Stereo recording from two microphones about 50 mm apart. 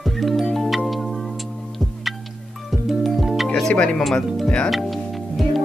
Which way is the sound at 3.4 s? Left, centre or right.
Centre.